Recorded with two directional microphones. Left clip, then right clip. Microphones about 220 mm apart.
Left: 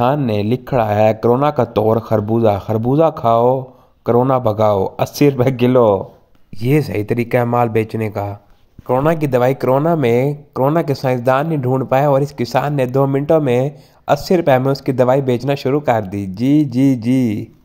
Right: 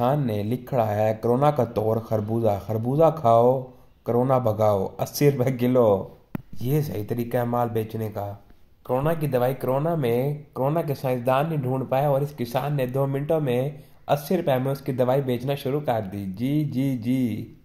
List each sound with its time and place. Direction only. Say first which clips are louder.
0.0 s speech: left 8 dB; 35° left (ahead or behind)